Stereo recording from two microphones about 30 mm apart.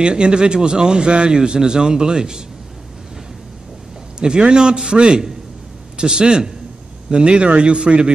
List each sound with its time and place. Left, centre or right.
0.0 s speech: right
4.2 s speech: right
7.1 s a man's voice: right